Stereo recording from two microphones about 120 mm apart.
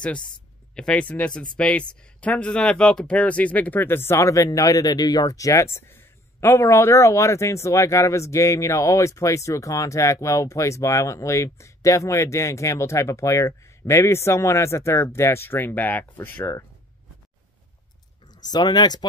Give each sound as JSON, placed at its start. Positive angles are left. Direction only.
{"t": 0.7, "sound": "speech", "side_deg": 10}
{"t": 18.2, "sound": "speech", "side_deg": 35}